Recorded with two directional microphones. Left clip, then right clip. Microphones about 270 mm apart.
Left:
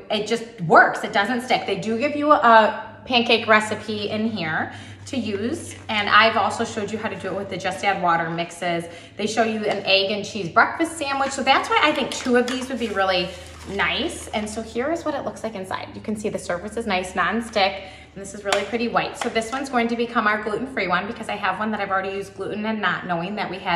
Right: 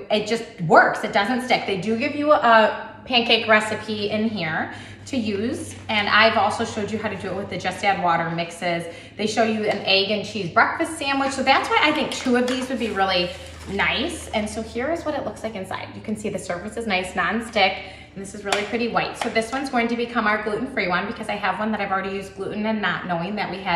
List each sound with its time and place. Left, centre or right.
0.1 s a woman's voice: centre